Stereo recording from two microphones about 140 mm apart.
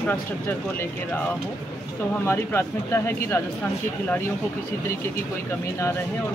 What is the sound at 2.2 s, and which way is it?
Speech, 15° left (ahead or behind).